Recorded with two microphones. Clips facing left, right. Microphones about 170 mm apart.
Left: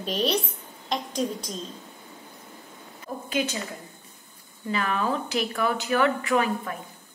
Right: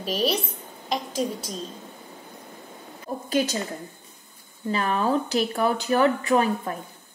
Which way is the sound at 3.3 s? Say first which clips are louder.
Right 4 dB; 40° right (ahead or behind).